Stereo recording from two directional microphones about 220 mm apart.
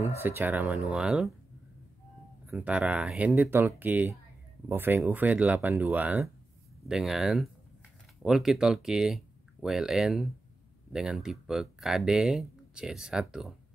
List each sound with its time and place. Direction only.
0.0 s speech: 10° right (ahead or behind)
2.4 s speech: 10° right (ahead or behind)